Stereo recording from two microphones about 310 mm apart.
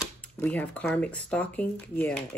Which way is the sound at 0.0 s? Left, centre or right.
Centre.